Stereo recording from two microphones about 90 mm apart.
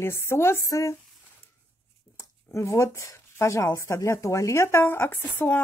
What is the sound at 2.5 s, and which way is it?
Speech, 35° left (ahead or behind).